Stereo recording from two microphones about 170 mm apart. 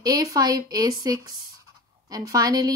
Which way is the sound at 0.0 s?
20° right (ahead or behind).